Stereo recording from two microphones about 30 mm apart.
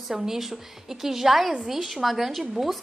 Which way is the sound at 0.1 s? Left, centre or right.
Centre.